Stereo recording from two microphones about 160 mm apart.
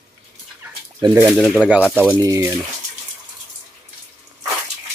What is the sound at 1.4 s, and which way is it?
Speech, centre (ahead or behind).